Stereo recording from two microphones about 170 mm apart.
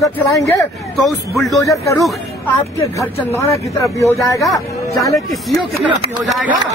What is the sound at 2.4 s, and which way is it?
Speech, 15° left (ahead or behind).